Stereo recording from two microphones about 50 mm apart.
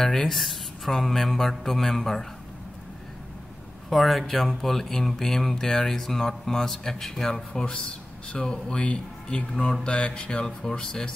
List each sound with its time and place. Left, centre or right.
0.0 s speech: centre
3.9 s speech: centre